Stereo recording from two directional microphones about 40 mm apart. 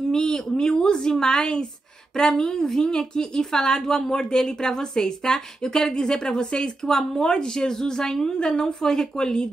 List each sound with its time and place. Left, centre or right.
0.1 s a woman's voice: centre